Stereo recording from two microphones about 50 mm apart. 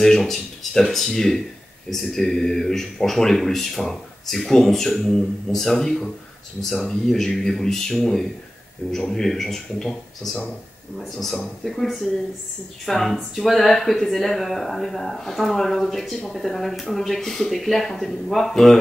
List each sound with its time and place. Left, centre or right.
0.0 s speech: centre